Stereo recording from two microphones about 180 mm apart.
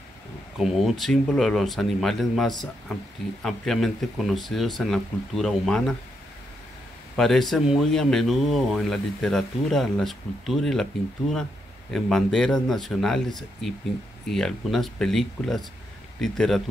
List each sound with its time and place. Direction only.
0.6 s speech: centre (ahead or behind)
7.2 s speech: centre (ahead or behind)